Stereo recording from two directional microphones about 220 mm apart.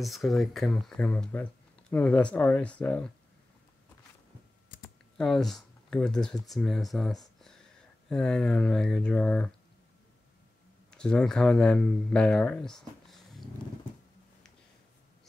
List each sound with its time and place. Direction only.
0.0 s speech: centre (ahead or behind)
5.1 s speech: centre (ahead or behind)
10.9 s speech: 5° left (ahead or behind)